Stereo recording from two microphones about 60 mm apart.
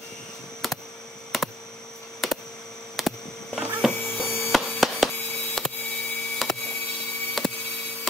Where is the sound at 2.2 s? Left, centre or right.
Centre.